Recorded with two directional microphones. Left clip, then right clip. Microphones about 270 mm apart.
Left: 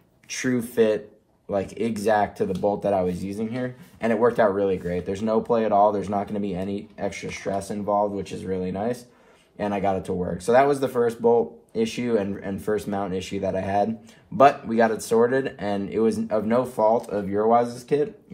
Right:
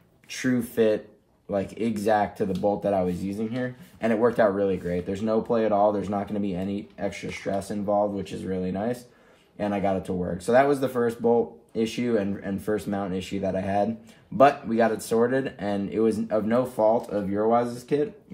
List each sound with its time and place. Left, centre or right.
0.4 s speech: left
15.0 s speech: left